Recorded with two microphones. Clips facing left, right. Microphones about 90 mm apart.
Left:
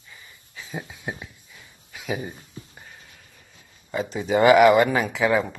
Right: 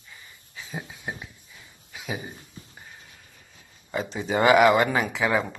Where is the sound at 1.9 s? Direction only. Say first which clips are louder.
Left 4 dB; 25° right (ahead or behind).